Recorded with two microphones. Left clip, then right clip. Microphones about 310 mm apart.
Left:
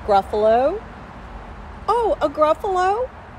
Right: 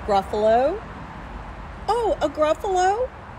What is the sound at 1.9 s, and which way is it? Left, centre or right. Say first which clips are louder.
Speech: left 3 dB; centre.